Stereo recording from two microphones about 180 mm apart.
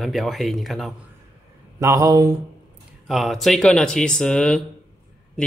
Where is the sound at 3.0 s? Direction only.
Centre (ahead or behind).